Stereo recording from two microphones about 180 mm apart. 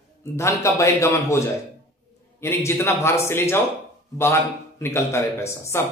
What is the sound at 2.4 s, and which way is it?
Speech, 15° left (ahead or behind).